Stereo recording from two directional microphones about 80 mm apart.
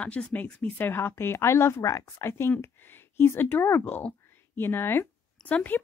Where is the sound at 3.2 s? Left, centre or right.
Left.